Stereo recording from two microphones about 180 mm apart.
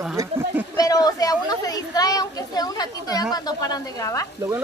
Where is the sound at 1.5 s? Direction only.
20° left (ahead or behind).